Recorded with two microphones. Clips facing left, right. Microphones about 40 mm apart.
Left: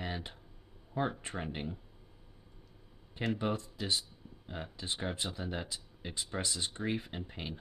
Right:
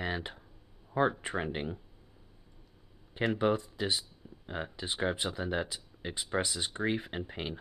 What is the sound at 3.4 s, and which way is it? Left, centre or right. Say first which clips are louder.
Speech: right 6 dB; right.